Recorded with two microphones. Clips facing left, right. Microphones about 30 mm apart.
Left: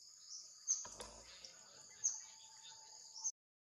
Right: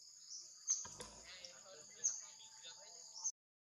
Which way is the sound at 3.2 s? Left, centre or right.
Centre.